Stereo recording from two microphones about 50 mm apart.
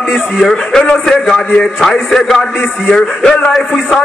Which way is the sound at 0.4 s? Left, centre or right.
Centre.